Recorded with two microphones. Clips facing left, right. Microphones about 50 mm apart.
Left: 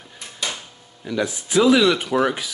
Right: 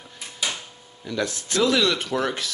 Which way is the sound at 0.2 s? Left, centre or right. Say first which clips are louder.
Even; centre.